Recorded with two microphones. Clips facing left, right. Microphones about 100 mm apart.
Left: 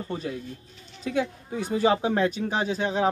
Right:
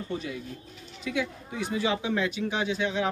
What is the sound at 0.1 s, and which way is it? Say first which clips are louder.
Speech: left 2 dB; 35° left (ahead or behind).